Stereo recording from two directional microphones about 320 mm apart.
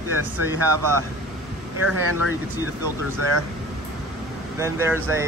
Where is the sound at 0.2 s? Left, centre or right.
Right.